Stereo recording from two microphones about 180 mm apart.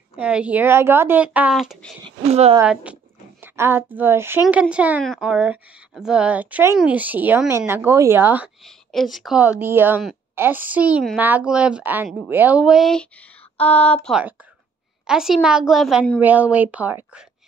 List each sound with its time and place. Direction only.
0.1 s a woman's voice: 5° right (ahead or behind)
2.0 s speech: 35° right (ahead or behind)
2.6 s a woman's voice: 5° right (ahead or behind)
8.6 s a woman's voice: centre (ahead or behind)
14.0 s speech: 5° right (ahead or behind)